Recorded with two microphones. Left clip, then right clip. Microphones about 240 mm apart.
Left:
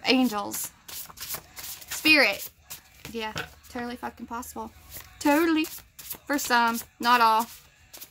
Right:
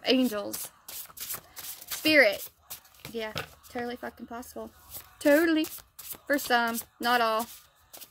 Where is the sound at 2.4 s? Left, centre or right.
Right.